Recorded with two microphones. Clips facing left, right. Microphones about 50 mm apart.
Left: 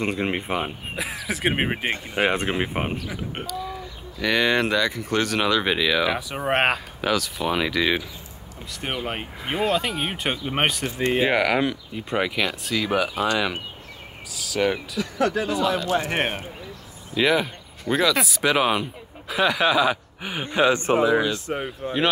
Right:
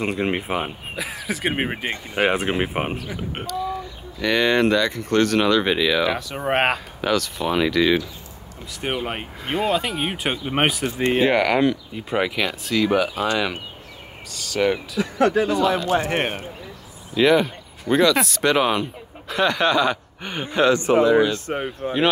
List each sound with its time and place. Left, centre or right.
0.0 s speech: centre
1.4 s speech: centre
2.1 s speech: centre
8.8 s speech: centre
15.0 s speech: right
16.1 s speech: centre
21.5 s speech: right